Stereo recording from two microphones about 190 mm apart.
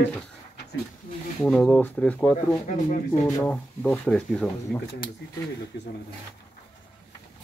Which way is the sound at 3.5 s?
5° left (ahead or behind).